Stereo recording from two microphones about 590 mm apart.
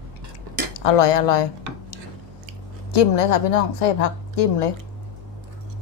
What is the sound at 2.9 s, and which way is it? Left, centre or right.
A woman's voice, left.